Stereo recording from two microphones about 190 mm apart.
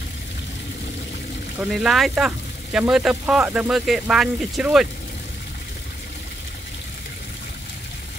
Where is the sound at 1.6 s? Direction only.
Centre (ahead or behind).